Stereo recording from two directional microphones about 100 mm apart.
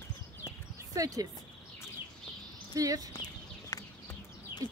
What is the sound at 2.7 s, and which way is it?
Speech, 35° right (ahead or behind).